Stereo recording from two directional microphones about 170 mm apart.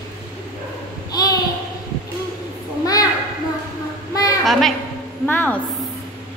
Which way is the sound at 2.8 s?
20° left (ahead or behind).